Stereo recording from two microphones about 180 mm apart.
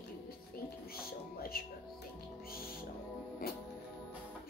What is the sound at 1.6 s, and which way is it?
Music, 55° left (ahead or behind).